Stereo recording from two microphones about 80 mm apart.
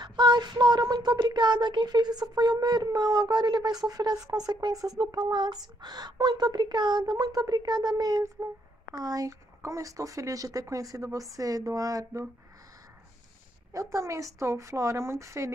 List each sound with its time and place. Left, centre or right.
0.0 s speech: right
8.4 s speech: right
13.7 s speech: right